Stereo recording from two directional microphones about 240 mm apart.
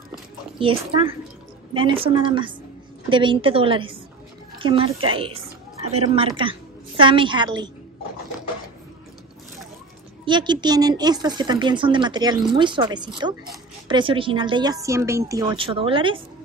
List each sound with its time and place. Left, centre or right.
0.6 s a woman's voice: right
10.2 s a woman's voice: centre